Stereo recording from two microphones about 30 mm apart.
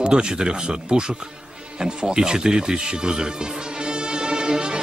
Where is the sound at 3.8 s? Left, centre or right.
Right.